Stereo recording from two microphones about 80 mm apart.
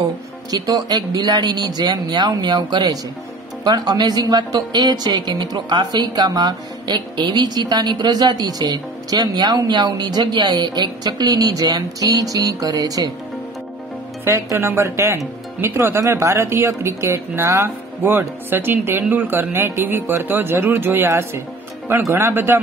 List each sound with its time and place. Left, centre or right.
0.5 s speech: right
14.2 s speech: right